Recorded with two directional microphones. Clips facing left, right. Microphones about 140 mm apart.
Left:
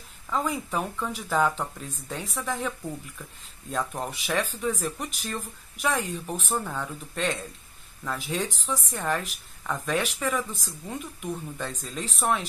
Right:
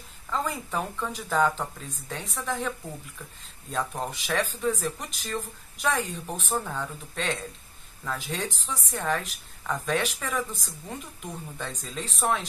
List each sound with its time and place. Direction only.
0.3 s speech: 5° left (ahead or behind)
3.7 s speech: 5° left (ahead or behind)